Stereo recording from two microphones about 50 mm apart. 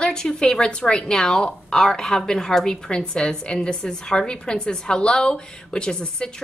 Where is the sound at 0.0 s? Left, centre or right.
Centre.